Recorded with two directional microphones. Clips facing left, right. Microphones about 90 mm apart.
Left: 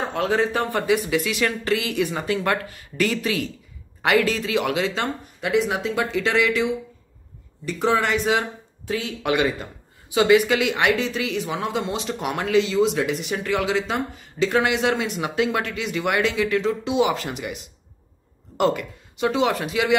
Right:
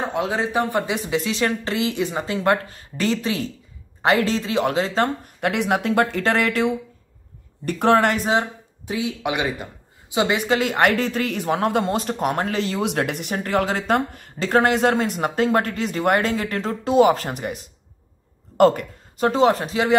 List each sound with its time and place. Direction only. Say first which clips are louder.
0.1 s speech: left 1 dB; 15° right (ahead or behind); by 8.2 s 55° right (ahead or behind)
8.8 s speech: even; 15° right (ahead or behind); by 20.0 s 35° right (ahead or behind)